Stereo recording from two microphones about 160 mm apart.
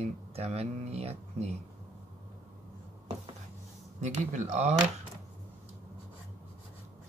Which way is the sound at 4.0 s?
50° right (ahead or behind).